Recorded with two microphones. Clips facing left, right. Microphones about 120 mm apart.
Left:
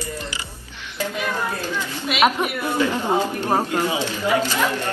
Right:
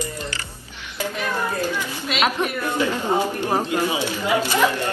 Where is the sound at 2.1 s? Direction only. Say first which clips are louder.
Left 3 dB; 10° left (ahead or behind).